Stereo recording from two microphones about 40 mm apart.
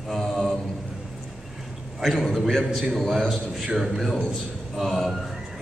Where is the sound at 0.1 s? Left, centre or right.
Centre.